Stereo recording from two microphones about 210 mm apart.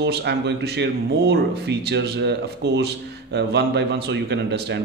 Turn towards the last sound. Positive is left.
turn(degrees=-55)  # may be behind; listen again after turning